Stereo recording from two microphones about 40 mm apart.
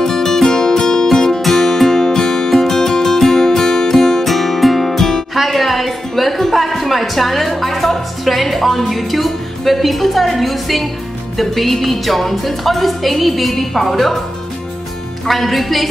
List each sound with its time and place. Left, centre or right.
0.0 s music: centre
5.3 s a woman's voice: centre
11.3 s music: centre
15.2 s music: centre